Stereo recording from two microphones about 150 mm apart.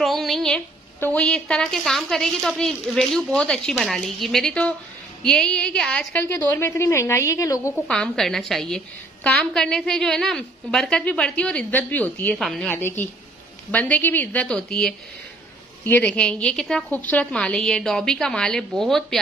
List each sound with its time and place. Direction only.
0.0 s a woman's voice: centre (ahead or behind); by 7.7 s 20° left (ahead or behind)
7.7 s a woman's voice: 5° left (ahead or behind)